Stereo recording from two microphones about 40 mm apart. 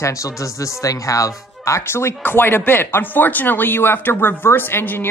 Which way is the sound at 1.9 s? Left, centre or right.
Left.